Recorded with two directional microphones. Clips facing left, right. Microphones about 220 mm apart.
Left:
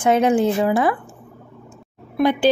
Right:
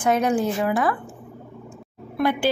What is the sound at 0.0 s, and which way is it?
Speech, 25° left (ahead or behind).